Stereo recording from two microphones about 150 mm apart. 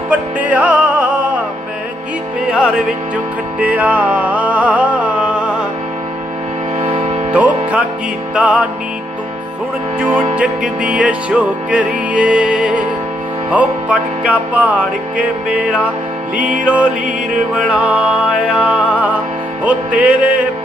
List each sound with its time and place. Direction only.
0.1 s music: 10° right (ahead or behind)
3.5 s music: 10° right (ahead or behind)
6.8 s music: 40° right (ahead or behind)
7.3 s music: 10° right (ahead or behind)
9.9 s music: 15° right (ahead or behind)
16.3 s music: 60° right (ahead or behind)
16.6 s music: 5° right (ahead or behind)